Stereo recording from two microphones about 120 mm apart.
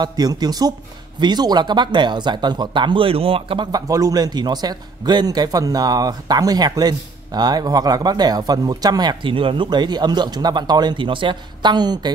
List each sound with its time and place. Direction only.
0.0 s a man's voice: 35° right (ahead or behind); by 3.6 s 50° right (ahead or behind)
3.7 s a man's voice: 30° right (ahead or behind)